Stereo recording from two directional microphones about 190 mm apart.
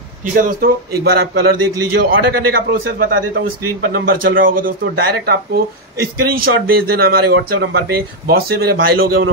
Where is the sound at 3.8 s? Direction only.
50° right (ahead or behind).